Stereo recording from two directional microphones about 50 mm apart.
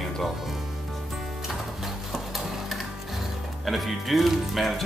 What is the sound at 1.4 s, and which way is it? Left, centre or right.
Music, centre.